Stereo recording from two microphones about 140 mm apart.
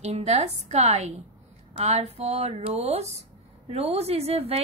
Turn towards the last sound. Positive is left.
turn(degrees=-45)  # may be behind; listen again after turning